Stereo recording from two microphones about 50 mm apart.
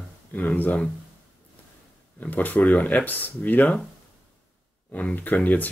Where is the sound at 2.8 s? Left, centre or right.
Left.